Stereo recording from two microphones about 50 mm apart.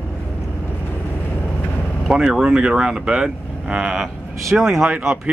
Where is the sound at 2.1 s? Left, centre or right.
Centre.